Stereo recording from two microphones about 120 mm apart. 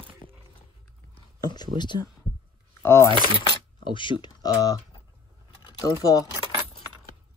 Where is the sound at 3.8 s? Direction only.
45° left (ahead or behind).